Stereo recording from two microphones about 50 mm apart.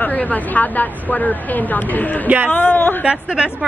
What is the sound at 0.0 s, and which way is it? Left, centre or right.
A woman's voice, left.